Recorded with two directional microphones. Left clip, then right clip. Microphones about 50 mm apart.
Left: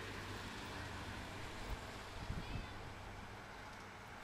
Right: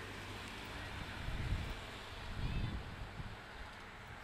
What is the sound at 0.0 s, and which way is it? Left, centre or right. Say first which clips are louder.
Vehicle: even; centre.